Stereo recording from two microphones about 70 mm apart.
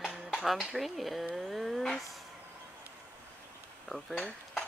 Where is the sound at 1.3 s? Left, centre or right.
Centre.